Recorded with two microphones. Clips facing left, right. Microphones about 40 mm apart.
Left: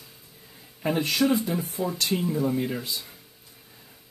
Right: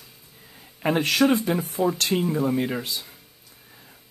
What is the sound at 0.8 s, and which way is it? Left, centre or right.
Speech, right.